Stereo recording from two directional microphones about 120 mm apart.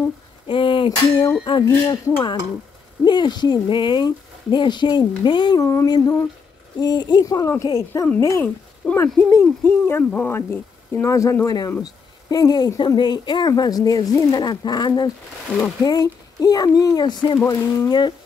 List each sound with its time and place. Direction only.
0.5 s a sound: 45° left (ahead or behind)
1.4 s a woman's voice: 40° left (ahead or behind)
3.1 s a woman's voice: 40° left (ahead or behind)
5.6 s a woman's voice: 20° left (ahead or behind)